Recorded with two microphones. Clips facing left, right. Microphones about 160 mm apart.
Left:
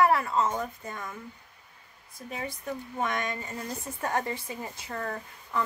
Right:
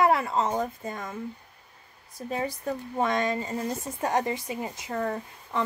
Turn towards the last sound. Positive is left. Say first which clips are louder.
# right 1 dB
turn(degrees=-25)  # may be behind; listen again after turning